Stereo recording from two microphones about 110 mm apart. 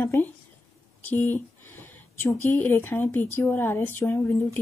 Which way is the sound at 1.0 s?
20° left (ahead or behind).